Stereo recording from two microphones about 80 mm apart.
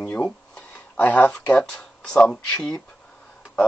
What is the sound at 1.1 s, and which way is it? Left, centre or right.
Speech, centre.